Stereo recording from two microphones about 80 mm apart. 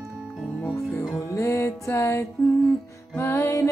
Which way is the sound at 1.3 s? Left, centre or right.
Left.